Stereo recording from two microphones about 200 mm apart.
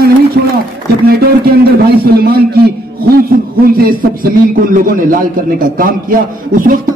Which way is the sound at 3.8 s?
45° right (ahead or behind).